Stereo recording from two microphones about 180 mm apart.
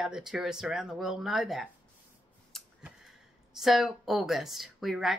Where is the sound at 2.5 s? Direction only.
Centre (ahead or behind).